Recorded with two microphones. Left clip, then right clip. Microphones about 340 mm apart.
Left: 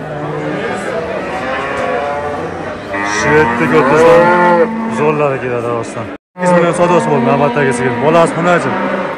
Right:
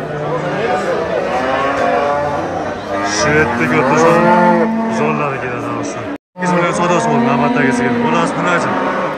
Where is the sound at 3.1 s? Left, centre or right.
Centre.